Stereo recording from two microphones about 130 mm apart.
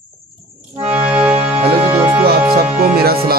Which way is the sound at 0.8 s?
10° right (ahead or behind).